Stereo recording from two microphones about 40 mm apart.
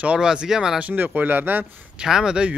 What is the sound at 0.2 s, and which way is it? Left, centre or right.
Speech, centre.